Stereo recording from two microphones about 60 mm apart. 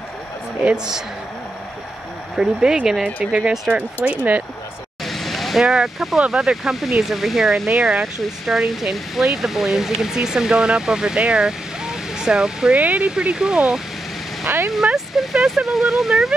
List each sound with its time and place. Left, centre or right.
2.3 s speech: centre
5.0 s vehicle: centre
6.2 s speech: centre
12.7 s speech: right
13.1 s speech: centre
14.4 s speech: right
15.1 s speech: centre